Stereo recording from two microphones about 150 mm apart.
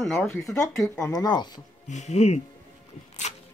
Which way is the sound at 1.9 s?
50° left (ahead or behind).